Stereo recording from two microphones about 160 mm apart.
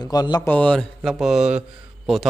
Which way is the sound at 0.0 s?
25° left (ahead or behind).